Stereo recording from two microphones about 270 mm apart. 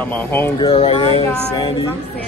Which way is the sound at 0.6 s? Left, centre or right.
Left.